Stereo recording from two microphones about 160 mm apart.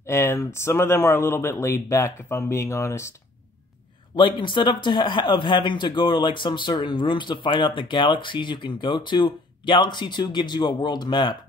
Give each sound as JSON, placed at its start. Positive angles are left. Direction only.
{"t": 0.0, "sound": "speech", "side_deg": 15}
{"t": 4.1, "sound": "speech", "side_deg": 30}